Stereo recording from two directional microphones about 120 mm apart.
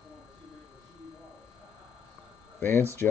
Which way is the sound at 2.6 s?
20° left (ahead or behind).